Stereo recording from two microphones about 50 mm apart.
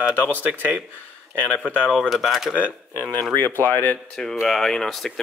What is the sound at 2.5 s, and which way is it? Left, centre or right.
Speech, left.